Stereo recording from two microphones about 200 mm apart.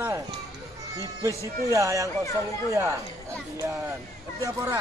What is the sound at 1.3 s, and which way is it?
Speech, 15° left (ahead or behind).